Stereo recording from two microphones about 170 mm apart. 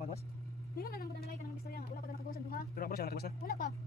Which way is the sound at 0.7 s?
65° left (ahead or behind).